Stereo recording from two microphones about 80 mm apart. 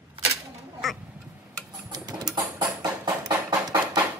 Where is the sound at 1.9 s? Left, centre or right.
Right.